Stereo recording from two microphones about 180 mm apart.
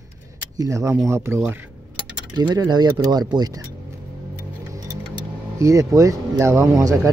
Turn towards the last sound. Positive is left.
turn(degrees=-15)  # may be behind; listen again after turning